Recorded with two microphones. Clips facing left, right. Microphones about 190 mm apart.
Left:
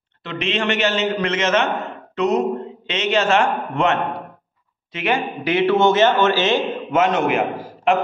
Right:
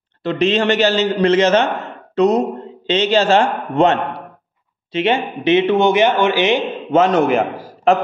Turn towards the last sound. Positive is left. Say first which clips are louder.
# right 3 dB
turn(degrees=-40)  # may be behind; listen again after turning